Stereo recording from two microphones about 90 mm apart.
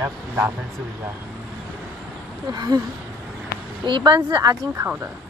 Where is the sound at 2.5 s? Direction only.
45° right (ahead or behind).